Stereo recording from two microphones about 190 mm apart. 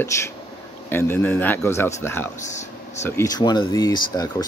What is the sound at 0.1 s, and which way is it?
Speech, 15° left (ahead or behind).